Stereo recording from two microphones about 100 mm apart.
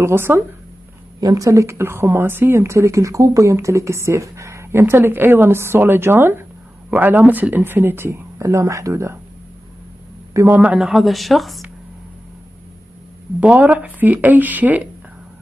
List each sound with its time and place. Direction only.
0.0 s speech: 25° right (ahead or behind)
1.2 s speech: 35° right (ahead or behind)
10.3 s a man's voice: 25° right (ahead or behind)
10.8 s a woman's voice: centre (ahead or behind)
13.4 s speech: 15° right (ahead or behind)